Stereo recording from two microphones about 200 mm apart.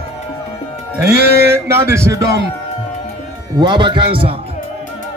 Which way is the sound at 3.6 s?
25° right (ahead or behind).